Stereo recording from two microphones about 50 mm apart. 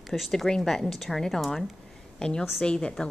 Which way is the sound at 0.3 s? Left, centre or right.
Centre.